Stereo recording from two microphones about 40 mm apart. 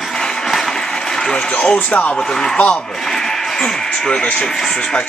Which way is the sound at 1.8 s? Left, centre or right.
Left.